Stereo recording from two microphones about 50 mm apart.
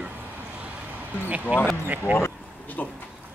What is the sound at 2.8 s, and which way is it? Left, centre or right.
Speech, left.